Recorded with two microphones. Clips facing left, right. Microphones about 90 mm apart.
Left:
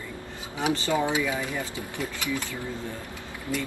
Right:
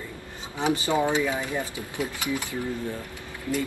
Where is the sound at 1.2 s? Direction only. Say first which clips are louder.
Right 2 dB; 25° right (ahead or behind).